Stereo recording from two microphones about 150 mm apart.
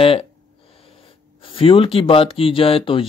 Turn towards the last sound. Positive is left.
turn(degrees=35)  # may be behind; listen again after turning